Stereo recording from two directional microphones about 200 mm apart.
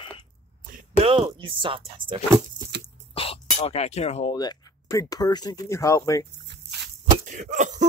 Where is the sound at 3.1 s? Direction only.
30° left (ahead or behind).